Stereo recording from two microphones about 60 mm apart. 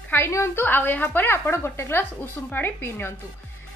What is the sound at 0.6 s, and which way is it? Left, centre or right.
A woman's voice, left.